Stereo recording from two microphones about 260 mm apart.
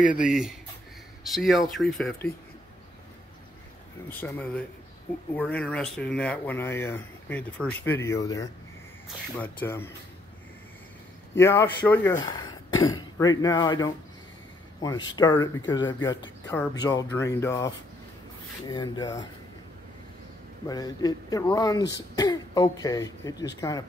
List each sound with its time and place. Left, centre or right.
0.2 s speech: centre
4.2 s speech: centre
11.3 s speech: centre
20.6 s speech: centre